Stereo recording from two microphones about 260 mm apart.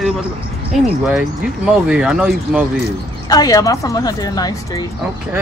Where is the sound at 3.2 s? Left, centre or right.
Centre.